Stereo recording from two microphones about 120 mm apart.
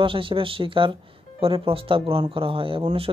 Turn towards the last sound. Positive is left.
turn(degrees=-45)  # may be behind; listen again after turning